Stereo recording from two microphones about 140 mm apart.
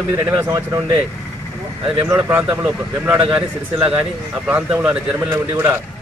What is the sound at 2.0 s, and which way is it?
Speech, 15° right (ahead or behind).